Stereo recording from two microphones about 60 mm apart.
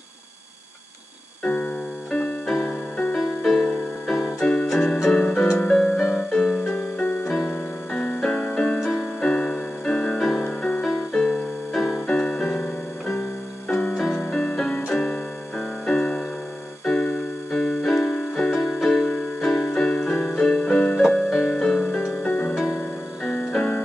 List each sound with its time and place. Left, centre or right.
1.4 s music: centre
2.4 s music: centre
4.1 s keyboard: centre
4.7 s music: centre
7.2 s music: centre
10.8 s music: centre
12.1 s music: centre
13.9 s music: centre
14.2 s music: centre
16.8 s keyboard: centre
21.0 s music: centre